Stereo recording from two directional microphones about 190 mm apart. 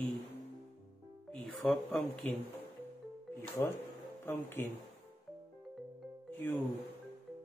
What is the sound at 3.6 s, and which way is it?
Speech, 20° left (ahead or behind).